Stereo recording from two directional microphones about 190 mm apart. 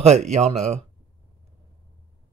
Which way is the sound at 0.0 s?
35° right (ahead or behind).